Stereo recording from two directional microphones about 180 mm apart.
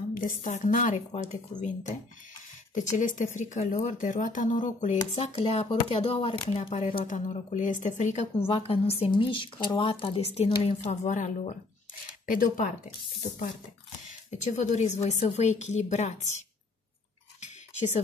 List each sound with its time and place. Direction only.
0.1 s a woman's voice: 45° left (ahead or behind)
14.4 s a woman's voice: 40° left (ahead or behind)
17.4 s cutlery: 40° left (ahead or behind)